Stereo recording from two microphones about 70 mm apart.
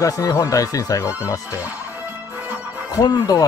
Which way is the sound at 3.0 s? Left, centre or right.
Left.